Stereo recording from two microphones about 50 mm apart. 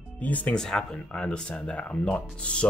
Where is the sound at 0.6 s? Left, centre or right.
Centre.